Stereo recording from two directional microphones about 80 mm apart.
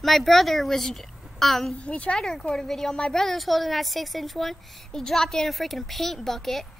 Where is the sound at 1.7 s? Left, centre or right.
Centre.